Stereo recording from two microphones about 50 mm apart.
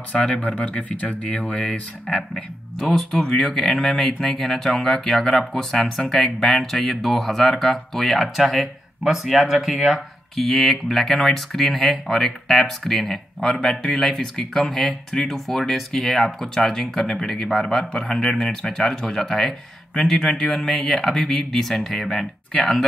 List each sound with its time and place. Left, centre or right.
0.1 s speech: left; by 10.0 s centre
10.3 s speech: centre